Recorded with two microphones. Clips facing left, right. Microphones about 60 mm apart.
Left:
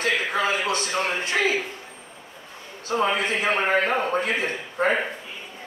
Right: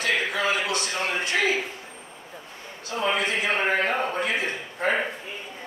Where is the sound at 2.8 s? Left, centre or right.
Left.